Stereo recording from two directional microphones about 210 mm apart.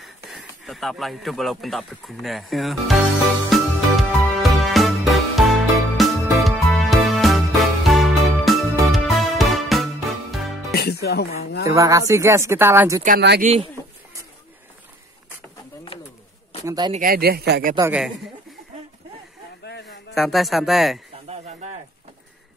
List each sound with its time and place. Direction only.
0.0 s speech: centre (ahead or behind)
3.4 s music: centre (ahead or behind)
10.7 s music: 50° left (ahead or behind)
11.6 s speech: 15° right (ahead or behind)
13.4 s speech: 30° right (ahead or behind)
16.6 s speech: 20° right (ahead or behind)
16.9 s speech: 45° right (ahead or behind)
17.7 s speech: 10° right (ahead or behind)
19.6 s a sound: 55° left (ahead or behind)
20.2 s speech: centre (ahead or behind)